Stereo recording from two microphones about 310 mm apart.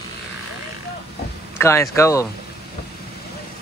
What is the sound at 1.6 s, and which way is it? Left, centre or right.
Speech, centre.